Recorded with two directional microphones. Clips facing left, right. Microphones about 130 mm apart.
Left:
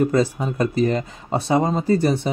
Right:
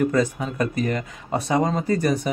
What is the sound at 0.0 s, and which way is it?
Speech, 30° left (ahead or behind).